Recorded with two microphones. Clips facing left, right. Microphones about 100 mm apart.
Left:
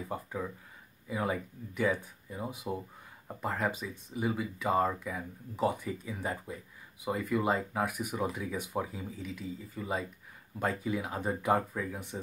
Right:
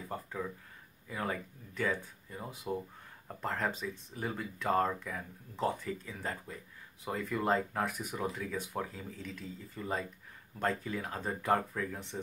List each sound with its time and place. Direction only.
0.1 s speech: 10° left (ahead or behind)